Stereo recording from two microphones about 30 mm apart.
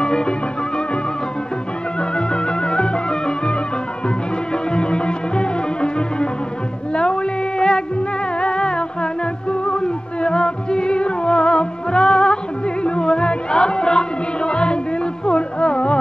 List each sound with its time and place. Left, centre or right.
0.0 s music: left
2.0 s music: left
4.6 s music: left
6.9 s a sound: left
8.4 s music: left